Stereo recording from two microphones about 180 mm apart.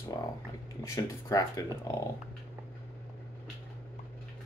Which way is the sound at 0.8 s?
20° left (ahead or behind).